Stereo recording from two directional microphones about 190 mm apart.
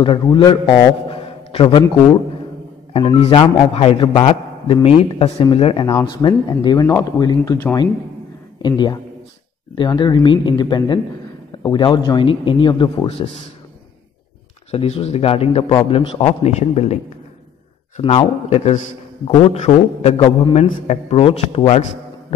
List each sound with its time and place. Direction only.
0.0 s a man's voice: 25° left (ahead or behind)
2.9 s speech: 30° left (ahead or behind)
14.7 s a man's voice: 30° left (ahead or behind)